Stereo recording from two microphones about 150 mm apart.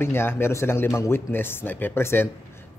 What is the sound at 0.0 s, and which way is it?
A man's voice, 15° left (ahead or behind).